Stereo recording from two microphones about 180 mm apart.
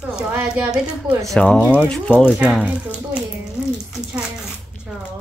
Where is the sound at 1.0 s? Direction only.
5° left (ahead or behind).